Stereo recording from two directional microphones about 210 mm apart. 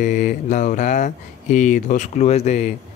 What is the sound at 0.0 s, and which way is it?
Mantra, 35° left (ahead or behind).